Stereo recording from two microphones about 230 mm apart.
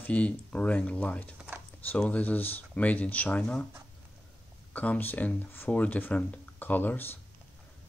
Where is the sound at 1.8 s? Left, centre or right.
Centre.